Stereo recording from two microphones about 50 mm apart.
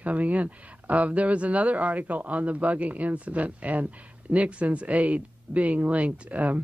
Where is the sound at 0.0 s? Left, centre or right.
Right.